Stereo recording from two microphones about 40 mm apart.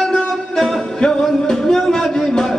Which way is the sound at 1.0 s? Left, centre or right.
Centre.